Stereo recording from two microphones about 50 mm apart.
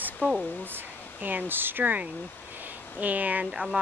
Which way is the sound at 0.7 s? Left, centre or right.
Right.